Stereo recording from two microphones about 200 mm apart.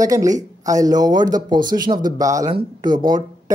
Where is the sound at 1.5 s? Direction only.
45° right (ahead or behind).